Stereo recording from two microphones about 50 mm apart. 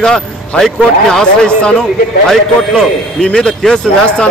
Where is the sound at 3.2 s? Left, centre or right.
Centre.